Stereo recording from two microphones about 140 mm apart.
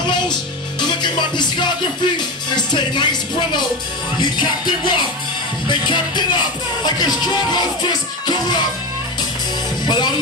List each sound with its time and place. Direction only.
0.7 s music: 30° left (ahead or behind)
2.1 s speech: 30° left (ahead or behind)
4.2 s music: 35° left (ahead or behind)
9.8 s music: 30° left (ahead or behind)